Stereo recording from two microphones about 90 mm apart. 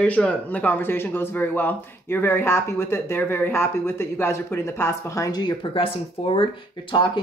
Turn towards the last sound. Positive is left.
turn(degrees=60)  # may be behind; listen again after turning